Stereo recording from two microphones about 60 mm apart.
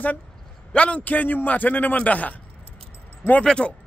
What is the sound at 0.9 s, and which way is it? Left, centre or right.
Speech, left.